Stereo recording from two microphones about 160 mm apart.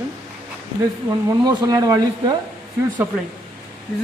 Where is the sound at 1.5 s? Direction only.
25° right (ahead or behind).